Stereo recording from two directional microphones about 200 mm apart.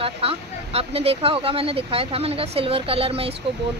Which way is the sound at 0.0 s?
30° right (ahead or behind).